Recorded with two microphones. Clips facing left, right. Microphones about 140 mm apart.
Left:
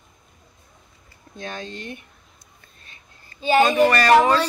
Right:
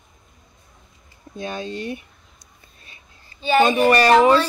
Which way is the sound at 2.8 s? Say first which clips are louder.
Even; 10° right (ahead or behind).